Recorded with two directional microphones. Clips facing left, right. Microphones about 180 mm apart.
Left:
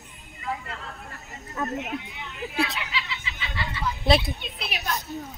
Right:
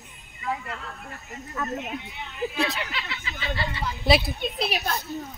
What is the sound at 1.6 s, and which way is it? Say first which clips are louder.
Speech: left 2 dB; 20° left (ahead or behind).